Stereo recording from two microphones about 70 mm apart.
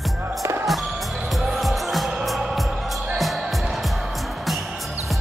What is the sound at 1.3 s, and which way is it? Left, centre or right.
Music, centre.